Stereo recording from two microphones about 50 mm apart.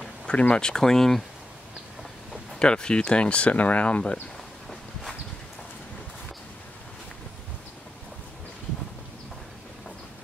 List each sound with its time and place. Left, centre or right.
0.3 s speech: left
2.6 s speech: centre